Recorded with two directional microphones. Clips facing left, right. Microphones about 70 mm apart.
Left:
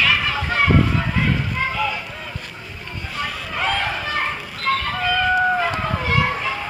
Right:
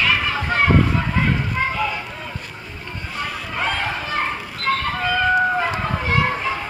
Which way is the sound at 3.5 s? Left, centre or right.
Right.